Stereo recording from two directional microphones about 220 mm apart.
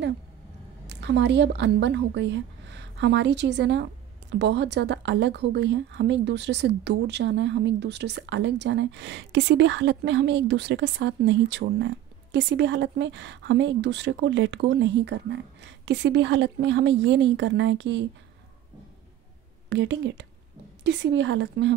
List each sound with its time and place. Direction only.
0.8 s a woman's voice: 50° right (ahead or behind)
19.7 s a woman's voice: 55° right (ahead or behind)